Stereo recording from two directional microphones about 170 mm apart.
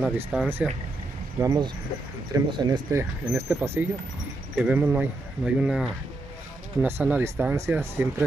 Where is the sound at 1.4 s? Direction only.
25° right (ahead or behind).